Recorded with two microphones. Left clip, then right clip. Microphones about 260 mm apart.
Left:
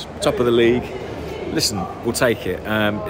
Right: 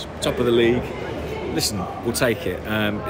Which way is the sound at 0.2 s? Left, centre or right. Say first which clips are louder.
Left 3 dB; centre.